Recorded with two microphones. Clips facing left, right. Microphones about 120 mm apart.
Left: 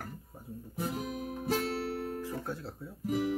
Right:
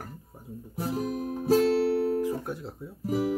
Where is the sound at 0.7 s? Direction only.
35° right (ahead or behind).